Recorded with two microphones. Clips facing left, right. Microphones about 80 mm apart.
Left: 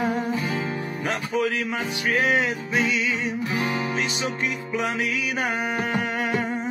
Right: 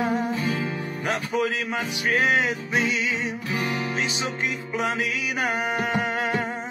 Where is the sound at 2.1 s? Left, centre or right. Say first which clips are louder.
Even; right.